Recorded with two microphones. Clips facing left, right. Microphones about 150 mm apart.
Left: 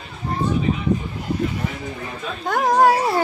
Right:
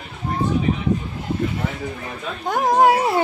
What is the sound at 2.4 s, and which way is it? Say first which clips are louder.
Speech: even; 20° right (ahead or behind).